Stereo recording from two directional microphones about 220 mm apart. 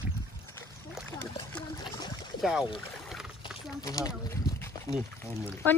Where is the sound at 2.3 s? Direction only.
Centre (ahead or behind).